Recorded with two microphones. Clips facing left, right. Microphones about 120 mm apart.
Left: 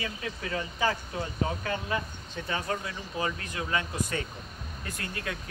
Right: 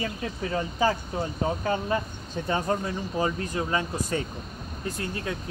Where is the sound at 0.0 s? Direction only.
30° right (ahead or behind).